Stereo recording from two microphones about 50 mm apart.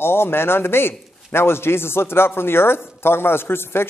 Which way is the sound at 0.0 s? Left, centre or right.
Left.